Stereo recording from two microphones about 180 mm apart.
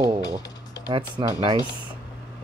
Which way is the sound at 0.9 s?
25° right (ahead or behind).